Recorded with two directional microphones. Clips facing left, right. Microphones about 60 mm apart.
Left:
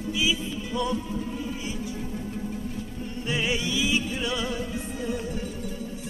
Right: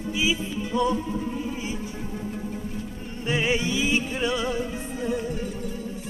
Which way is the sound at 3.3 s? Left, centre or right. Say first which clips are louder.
Right 4 dB; right.